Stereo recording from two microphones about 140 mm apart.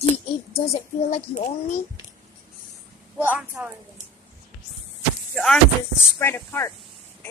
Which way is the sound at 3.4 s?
10° right (ahead or behind).